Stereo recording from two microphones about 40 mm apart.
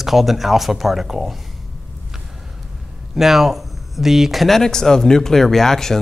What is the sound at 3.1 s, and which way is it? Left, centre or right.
Speech, centre.